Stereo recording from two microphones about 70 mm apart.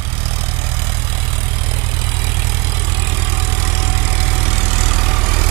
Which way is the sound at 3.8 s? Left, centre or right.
Right.